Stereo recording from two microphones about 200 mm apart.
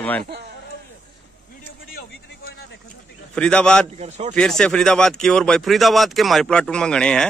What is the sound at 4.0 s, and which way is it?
Speech, 35° right (ahead or behind).